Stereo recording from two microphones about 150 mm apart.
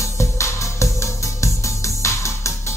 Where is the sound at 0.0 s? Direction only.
20° left (ahead or behind).